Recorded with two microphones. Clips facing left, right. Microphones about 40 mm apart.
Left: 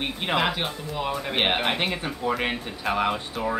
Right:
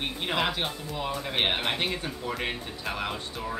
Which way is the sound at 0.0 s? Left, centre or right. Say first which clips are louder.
Left 4 dB; centre.